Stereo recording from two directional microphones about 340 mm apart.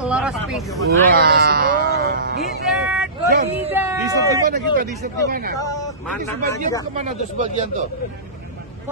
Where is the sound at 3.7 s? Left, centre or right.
Centre.